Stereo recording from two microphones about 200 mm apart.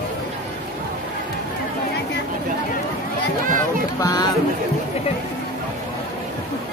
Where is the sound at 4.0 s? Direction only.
20° left (ahead or behind).